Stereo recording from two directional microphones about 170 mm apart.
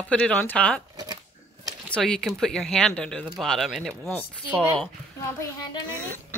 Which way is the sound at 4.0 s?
10° left (ahead or behind).